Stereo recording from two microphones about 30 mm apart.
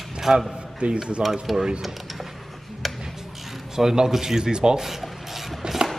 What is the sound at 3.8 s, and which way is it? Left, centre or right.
Speech, centre.